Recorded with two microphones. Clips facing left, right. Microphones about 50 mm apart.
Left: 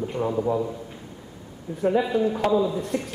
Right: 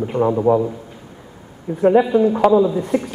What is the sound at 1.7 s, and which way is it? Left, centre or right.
Speech, right.